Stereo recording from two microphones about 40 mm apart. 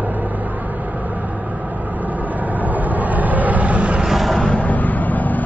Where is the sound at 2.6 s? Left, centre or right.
Right.